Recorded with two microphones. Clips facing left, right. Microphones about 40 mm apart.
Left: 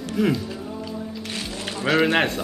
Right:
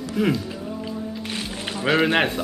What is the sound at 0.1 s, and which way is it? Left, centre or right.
Speech, centre.